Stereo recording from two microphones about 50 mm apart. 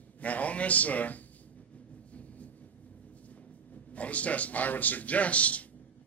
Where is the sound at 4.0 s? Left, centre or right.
Left.